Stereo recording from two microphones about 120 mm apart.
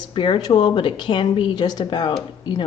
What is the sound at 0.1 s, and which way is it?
Speech, 45° left (ahead or behind).